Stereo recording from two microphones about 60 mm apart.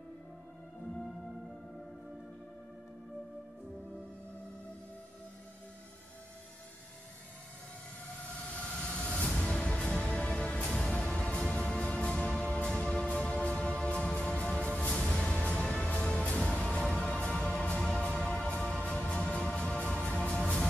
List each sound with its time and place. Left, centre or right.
8.8 s music: centre